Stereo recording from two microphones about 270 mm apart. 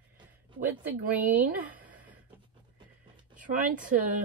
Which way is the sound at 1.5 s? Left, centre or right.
Centre.